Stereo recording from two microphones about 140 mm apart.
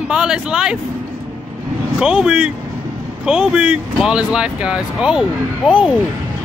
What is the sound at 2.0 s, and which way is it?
Speech, 5° right (ahead or behind).